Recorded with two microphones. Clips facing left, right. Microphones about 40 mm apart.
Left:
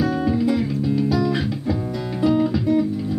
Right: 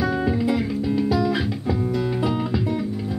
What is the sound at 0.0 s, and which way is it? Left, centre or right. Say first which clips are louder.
Music: left 2 dB; centre.